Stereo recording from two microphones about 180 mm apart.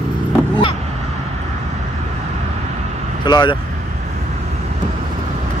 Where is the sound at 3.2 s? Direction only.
25° left (ahead or behind).